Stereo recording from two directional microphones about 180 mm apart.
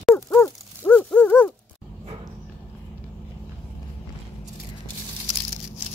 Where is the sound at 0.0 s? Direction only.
10° left (ahead or behind).